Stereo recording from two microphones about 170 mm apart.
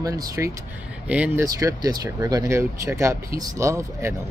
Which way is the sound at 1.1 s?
10° right (ahead or behind).